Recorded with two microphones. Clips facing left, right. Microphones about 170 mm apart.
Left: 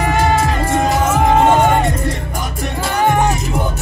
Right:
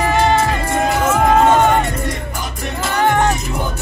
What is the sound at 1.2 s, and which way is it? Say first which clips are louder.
Music: even; 15° left (ahead or behind).